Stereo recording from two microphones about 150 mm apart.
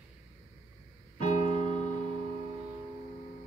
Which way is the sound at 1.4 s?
40° right (ahead or behind).